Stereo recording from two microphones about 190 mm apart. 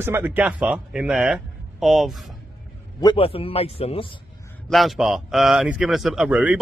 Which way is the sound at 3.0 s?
30° left (ahead or behind).